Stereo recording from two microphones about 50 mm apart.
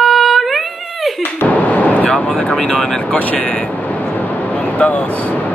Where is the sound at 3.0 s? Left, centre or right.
Left.